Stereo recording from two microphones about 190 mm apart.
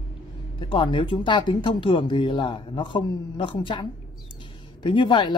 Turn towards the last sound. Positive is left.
turn(degrees=25)  # may be behind; listen again after turning